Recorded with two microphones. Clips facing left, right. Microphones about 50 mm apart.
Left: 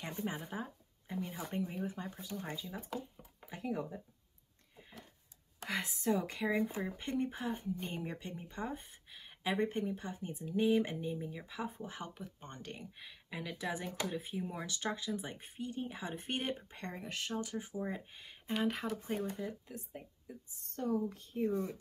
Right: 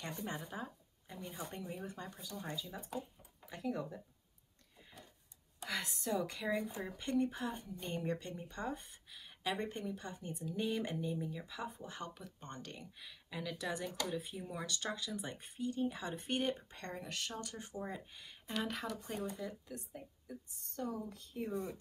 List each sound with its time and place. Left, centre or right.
0.1 s speech: left
2.1 s speech: left
5.7 s speech: left
21.5 s speech: centre